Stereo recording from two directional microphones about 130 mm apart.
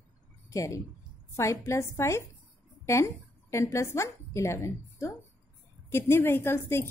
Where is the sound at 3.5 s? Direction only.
20° left (ahead or behind).